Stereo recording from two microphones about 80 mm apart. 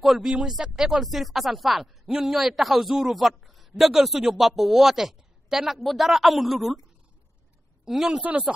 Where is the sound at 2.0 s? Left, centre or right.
Centre.